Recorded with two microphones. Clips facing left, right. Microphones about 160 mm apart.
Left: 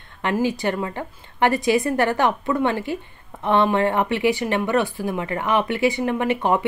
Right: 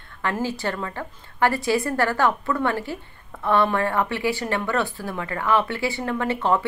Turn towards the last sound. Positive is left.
turn(degrees=15)  # may be behind; listen again after turning